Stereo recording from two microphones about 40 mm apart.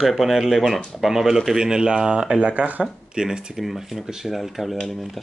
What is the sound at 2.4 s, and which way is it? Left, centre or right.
Speech, right.